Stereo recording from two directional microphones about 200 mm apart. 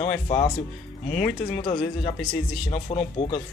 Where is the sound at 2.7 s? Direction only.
30° left (ahead or behind).